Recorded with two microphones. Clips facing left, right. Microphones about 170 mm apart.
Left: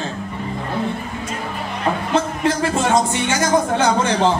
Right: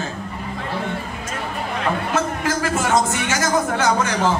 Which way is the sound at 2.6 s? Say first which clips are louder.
Even; 25° left (ahead or behind).